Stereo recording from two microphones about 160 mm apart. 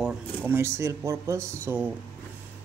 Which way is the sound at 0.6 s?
15° right (ahead or behind).